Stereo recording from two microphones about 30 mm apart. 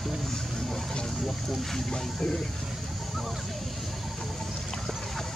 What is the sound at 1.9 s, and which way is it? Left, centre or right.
Speech, left.